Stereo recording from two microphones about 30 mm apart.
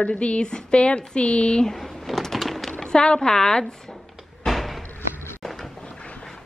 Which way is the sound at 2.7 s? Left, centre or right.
Left.